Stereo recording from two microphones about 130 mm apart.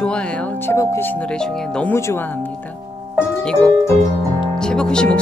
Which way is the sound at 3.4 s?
10° left (ahead or behind).